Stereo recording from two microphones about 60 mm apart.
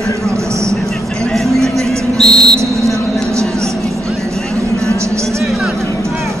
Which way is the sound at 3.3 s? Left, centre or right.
Right.